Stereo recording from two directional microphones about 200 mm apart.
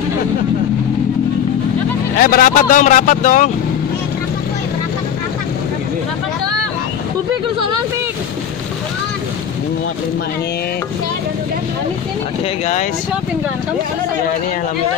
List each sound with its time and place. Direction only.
2.1 s speech: 45° left (ahead or behind)